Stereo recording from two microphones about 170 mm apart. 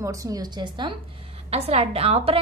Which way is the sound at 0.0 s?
20° right (ahead or behind).